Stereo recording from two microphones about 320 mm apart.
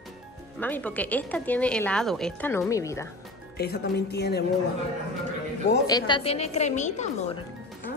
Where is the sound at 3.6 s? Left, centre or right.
Left.